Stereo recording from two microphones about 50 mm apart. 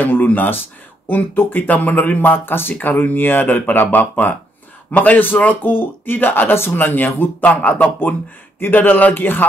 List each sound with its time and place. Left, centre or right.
0.0 s speech: left
7.4 s speech: left